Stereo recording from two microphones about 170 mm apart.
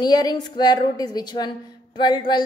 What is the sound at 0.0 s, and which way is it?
Speech, 25° left (ahead or behind).